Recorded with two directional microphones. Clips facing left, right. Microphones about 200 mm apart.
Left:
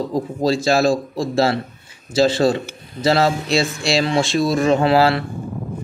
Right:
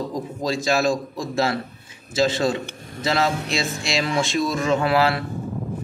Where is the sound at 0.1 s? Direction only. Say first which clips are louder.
Left 6 dB; 30° left (ahead or behind).